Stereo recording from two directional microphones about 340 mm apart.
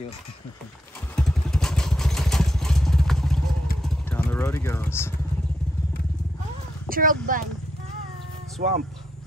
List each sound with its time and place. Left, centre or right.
1.1 s vehicle: centre
6.9 s speech: right
8.6 s speech: right